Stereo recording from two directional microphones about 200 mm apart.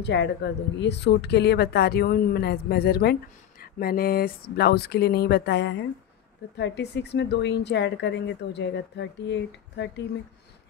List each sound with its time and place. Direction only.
0.0 s a woman's voice: 60° left (ahead or behind)